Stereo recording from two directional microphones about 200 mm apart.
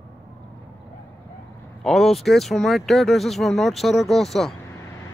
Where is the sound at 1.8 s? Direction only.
Centre (ahead or behind).